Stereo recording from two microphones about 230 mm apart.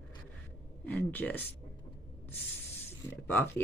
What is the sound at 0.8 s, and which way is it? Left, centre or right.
Speech, centre.